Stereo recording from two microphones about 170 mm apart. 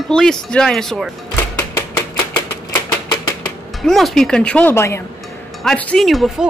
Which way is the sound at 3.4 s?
Centre (ahead or behind).